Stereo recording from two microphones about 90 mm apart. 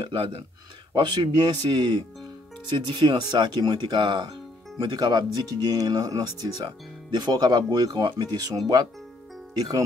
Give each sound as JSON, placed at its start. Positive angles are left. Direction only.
{"t": 0.0, "sound": "speech", "side_deg": -70}
{"t": 0.9, "sound": "speech", "side_deg": -60}
{"t": 4.7, "sound": "speech", "side_deg": -45}